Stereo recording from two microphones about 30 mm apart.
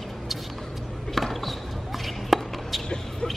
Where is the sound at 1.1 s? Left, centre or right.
Centre.